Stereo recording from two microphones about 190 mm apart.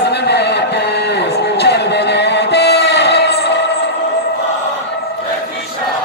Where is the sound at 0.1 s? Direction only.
60° left (ahead or behind).